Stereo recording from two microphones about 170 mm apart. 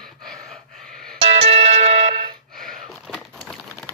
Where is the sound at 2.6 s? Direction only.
Centre (ahead or behind).